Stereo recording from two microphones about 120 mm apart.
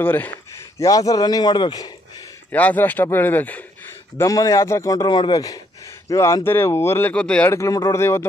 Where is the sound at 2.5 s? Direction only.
15° left (ahead or behind).